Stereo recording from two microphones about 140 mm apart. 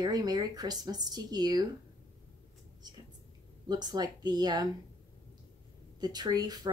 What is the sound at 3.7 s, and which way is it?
Speech, 30° right (ahead or behind).